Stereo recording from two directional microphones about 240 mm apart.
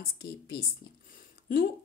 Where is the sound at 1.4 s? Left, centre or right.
Left.